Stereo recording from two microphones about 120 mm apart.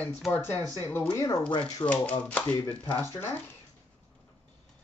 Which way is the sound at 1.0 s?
30° left (ahead or behind).